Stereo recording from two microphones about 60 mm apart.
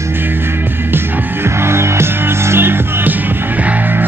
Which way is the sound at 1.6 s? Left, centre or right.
Right.